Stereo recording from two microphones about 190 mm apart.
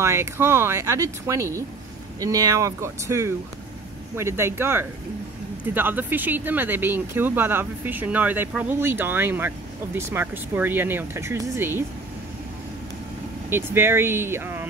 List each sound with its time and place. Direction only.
0.0 s speech: 15° right (ahead or behind)
13.5 s speech: 10° right (ahead or behind)